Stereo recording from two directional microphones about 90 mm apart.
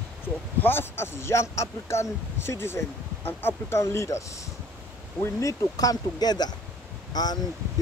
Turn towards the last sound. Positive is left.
turn(degrees=50)  # may be behind; listen again after turning